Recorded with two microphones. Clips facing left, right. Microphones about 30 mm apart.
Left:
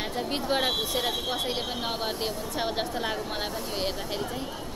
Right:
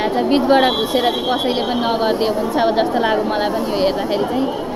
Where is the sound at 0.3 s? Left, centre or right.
Right.